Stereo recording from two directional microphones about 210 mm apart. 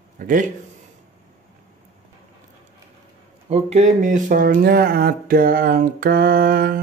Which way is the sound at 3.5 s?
30° right (ahead or behind).